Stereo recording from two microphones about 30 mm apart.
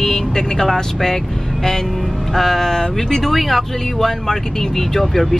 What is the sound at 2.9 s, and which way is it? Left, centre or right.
Speech, centre.